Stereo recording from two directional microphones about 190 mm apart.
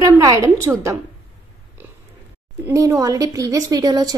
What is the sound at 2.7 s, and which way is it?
A woman's voice, 15° right (ahead or behind).